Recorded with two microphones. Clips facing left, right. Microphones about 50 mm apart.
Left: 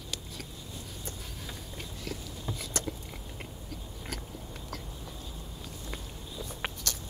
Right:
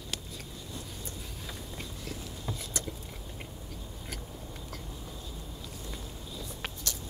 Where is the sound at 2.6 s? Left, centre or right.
Left.